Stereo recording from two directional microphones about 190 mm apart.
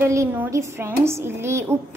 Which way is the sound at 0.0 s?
15° right (ahead or behind).